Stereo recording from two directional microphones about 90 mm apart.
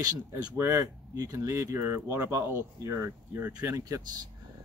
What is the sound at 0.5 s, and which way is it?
Speech, 30° right (ahead or behind).